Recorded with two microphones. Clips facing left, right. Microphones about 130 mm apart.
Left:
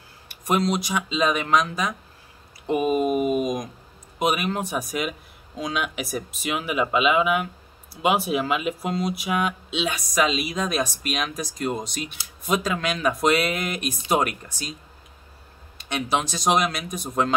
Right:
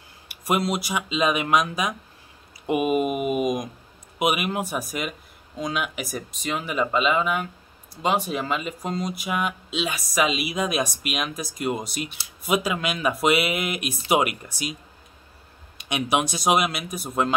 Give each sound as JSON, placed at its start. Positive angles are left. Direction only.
{"t": 0.3, "sound": "speech", "side_deg": -5}
{"t": 15.8, "sound": "speech", "side_deg": -15}